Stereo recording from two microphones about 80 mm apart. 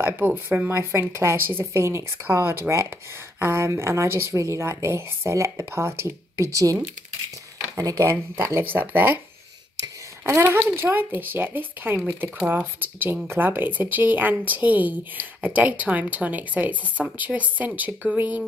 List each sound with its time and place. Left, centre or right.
0.5 s speech: right
6.5 s speech: right
10.2 s speech: right